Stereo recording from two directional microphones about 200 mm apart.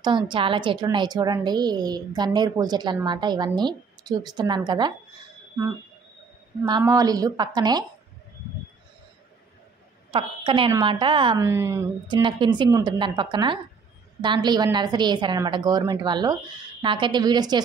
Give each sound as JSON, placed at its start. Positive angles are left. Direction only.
{"t": 0.0, "sound": "a woman's voice", "side_deg": -25}
{"t": 6.8, "sound": "a woman's voice", "side_deg": -20}
{"t": 10.1, "sound": "a woman's voice", "side_deg": -25}